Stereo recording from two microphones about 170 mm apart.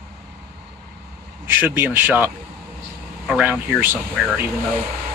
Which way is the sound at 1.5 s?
10° right (ahead or behind).